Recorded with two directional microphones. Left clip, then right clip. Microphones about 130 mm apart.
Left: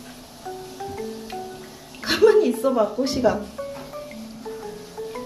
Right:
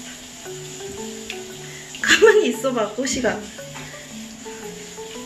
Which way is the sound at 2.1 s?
5° left (ahead or behind).